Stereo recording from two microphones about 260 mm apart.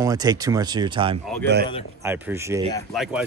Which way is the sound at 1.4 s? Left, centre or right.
Right.